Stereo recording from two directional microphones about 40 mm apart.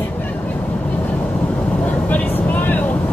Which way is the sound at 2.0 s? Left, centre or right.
Left.